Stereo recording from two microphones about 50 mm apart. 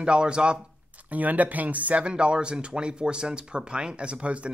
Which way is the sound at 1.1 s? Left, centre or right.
Right.